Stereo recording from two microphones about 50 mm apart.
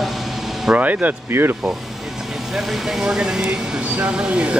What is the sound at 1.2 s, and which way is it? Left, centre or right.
Speech, right.